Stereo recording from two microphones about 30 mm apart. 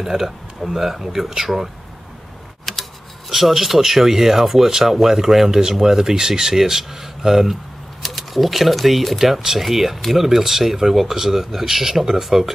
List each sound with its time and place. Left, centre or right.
0.0 s speech: centre
2.6 s tick-tock: centre
3.3 s speech: centre; by 6.5 s right
6.5 s speech: centre
8.0 s speech: centre